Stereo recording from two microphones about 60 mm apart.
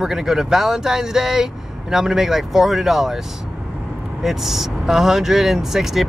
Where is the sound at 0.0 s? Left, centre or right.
Centre.